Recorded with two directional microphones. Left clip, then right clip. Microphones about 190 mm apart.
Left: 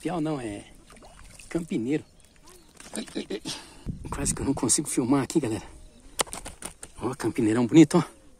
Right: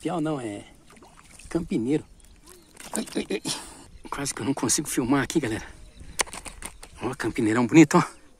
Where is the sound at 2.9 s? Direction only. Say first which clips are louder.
Right 4 dB; 35° right (ahead or behind).